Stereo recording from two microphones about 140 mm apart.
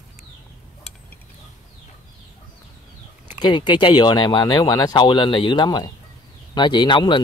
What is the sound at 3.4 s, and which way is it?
Speech, 35° left (ahead or behind).